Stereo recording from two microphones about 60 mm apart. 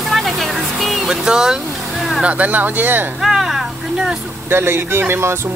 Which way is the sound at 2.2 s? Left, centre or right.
Right.